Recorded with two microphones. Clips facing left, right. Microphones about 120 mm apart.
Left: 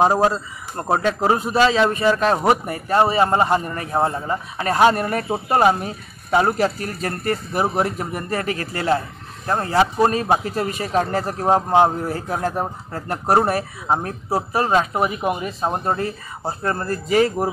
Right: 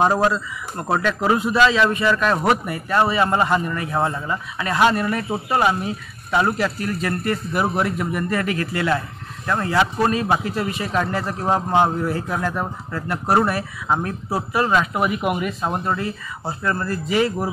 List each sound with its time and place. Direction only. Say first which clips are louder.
0.0 s a man's voice: left 1 dB; 30° left (ahead or behind)